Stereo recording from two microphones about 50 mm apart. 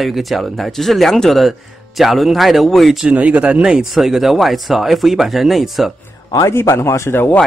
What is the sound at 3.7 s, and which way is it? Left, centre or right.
Speech, centre.